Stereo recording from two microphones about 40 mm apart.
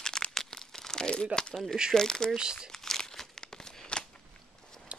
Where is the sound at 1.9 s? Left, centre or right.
Centre.